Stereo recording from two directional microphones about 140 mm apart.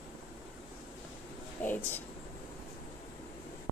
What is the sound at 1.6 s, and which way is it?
Speech, 15° left (ahead or behind).